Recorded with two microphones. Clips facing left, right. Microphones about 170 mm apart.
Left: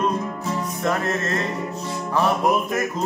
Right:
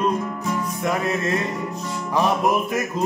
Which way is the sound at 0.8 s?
15° right (ahead or behind).